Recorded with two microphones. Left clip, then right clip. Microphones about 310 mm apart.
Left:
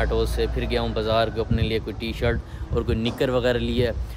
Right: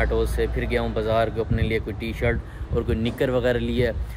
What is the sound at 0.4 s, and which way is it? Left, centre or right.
Speech, centre.